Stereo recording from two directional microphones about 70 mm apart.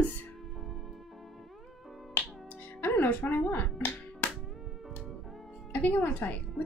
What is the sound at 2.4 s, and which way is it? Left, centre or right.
Finger snapping, left.